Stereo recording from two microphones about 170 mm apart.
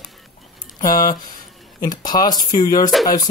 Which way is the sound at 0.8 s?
55° left (ahead or behind).